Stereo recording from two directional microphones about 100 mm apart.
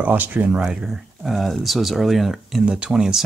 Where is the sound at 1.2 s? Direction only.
Centre (ahead or behind).